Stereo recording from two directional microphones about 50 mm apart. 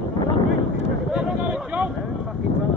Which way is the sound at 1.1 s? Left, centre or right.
Right.